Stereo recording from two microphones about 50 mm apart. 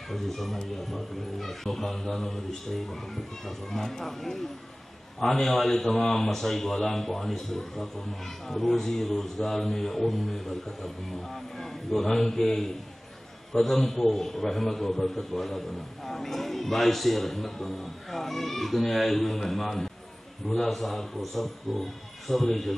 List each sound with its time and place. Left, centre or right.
0.1 s a man's voice: centre